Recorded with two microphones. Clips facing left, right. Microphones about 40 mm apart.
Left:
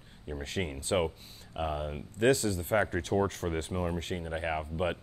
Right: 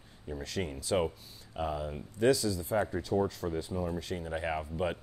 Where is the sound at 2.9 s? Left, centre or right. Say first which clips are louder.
Left 1 dB; left.